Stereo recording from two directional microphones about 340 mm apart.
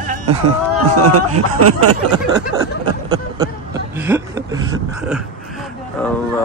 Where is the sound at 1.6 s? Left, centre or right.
Right.